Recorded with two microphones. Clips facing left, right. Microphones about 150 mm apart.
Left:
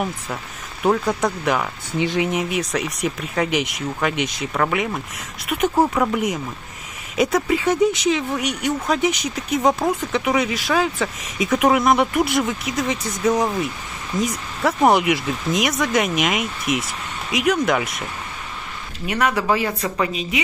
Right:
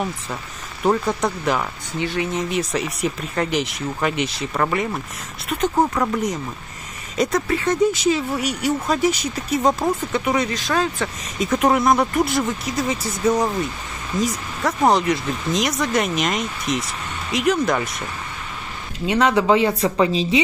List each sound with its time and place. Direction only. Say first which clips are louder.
0.8 s speech: even; centre (ahead or behind)
2.0 s speech: left 3 dB; 15° left (ahead or behind)
2.5 s speech: even; centre (ahead or behind)
19.0 s a woman's voice: right 3 dB; 20° right (ahead or behind)